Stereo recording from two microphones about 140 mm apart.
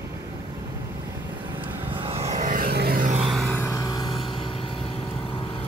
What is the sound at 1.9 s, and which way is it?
Vehicle, 40° right (ahead or behind).